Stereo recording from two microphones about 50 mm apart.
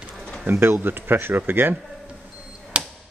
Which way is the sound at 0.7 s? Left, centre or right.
Right.